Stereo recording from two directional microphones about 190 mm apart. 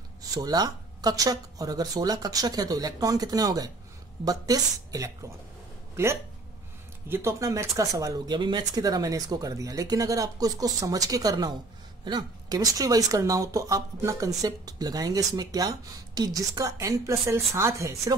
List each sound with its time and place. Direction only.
0.2 s speech: 20° right (ahead or behind)